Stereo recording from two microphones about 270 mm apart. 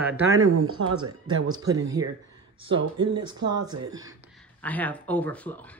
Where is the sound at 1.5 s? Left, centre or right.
Centre.